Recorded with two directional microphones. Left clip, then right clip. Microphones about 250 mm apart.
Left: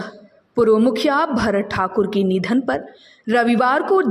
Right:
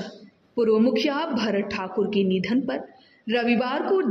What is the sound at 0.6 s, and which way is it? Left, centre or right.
A woman's voice, centre.